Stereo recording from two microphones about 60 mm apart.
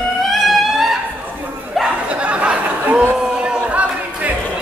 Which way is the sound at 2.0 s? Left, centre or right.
Right.